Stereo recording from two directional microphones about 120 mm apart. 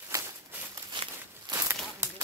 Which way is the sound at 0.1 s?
20° right (ahead or behind).